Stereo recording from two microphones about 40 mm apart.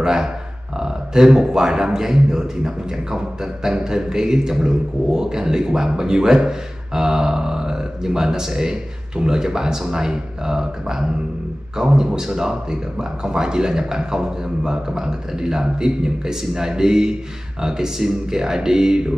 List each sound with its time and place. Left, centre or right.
0.0 s a man's voice: centre